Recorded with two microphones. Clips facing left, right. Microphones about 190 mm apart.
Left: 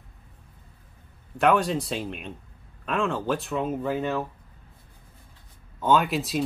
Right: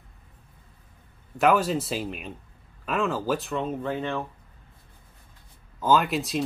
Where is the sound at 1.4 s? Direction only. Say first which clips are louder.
Even; centre (ahead or behind).